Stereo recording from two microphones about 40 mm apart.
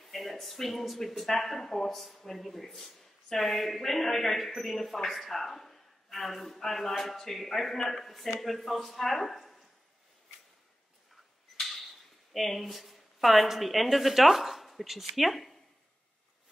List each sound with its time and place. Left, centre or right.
0.0 s speech: centre
11.5 s a sound: centre
12.3 s a woman's voice: centre